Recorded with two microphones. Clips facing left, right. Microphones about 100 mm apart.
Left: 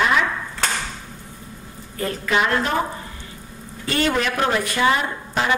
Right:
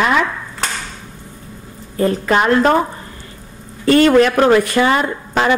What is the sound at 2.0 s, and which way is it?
Speech, 40° right (ahead or behind).